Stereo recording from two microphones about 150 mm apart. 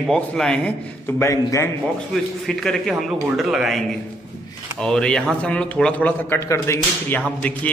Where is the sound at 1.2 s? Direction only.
20° left (ahead or behind).